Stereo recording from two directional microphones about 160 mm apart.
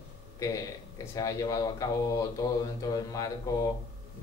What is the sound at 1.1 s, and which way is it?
Speech, 20° left (ahead or behind).